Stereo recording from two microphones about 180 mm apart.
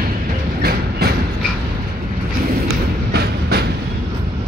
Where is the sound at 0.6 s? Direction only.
60° right (ahead or behind).